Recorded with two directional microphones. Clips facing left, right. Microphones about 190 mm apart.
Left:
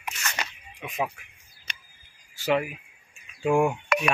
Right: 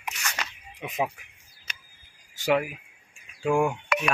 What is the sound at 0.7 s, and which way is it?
Speech, 20° right (ahead or behind).